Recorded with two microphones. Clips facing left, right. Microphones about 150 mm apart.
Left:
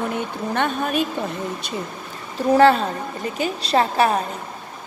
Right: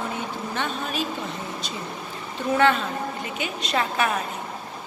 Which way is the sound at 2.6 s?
35° left (ahead or behind).